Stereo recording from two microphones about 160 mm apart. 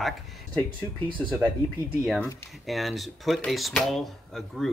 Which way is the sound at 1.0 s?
30° right (ahead or behind).